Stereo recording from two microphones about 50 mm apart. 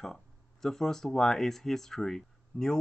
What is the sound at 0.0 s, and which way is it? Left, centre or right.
Speech, centre.